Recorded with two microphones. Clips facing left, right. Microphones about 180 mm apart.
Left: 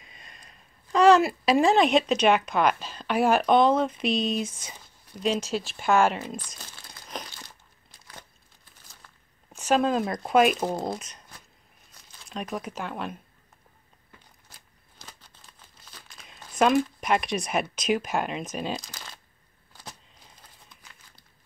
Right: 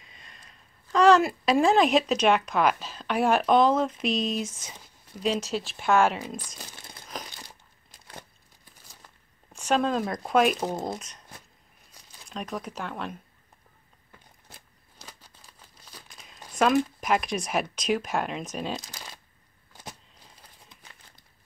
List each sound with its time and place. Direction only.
0.1 s a sound: 15° left (ahead or behind)
0.9 s speech: 5° left (ahead or behind)
6.7 s crumpling: 25° right (ahead or behind)
9.5 s speech: 5° left (ahead or behind)
12.3 s speech: 5° left (ahead or behind)
15.0 s crumpling: 10° right (ahead or behind)
17.0 s speech: centre (ahead or behind)